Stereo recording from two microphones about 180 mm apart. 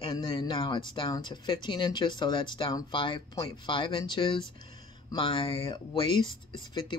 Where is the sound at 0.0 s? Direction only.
25° left (ahead or behind).